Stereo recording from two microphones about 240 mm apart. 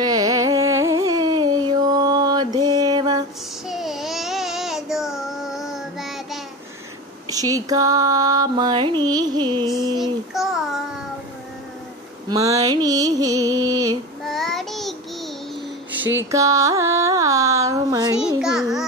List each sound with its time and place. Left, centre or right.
0.0 s carnatic music: centre
3.6 s a sound: centre
7.2 s music: centre
10.3 s child singing: centre
12.3 s a sound: centre
14.2 s child singing: centre
16.3 s music: centre
18.4 s child singing: centre